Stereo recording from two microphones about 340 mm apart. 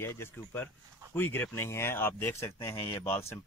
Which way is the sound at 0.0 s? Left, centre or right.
Centre.